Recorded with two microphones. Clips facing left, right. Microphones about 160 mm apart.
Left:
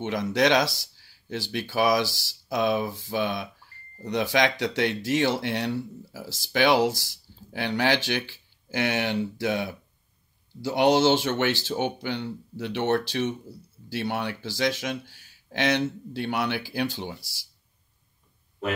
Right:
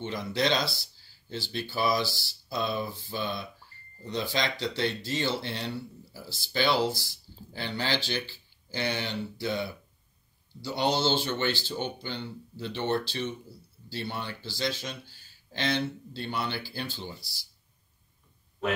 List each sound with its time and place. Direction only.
0.0 s speech: 85° left
13.8 s speech: 90° left